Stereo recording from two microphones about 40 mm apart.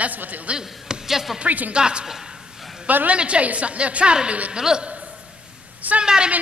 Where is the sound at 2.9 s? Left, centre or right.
Right.